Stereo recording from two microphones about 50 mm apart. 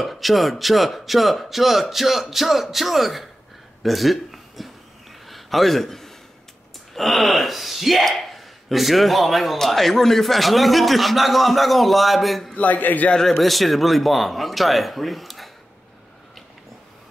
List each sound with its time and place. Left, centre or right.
0.0 s speech: centre
5.2 s a sound: centre
6.9 s speech: centre
12.5 s a man's voice: left
13.1 s speech: centre